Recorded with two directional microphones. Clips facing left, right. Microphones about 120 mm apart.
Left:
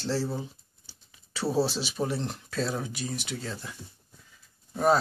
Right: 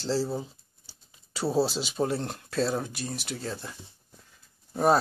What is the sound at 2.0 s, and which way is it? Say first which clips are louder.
Speech: right 3 dB; 25° right (ahead or behind).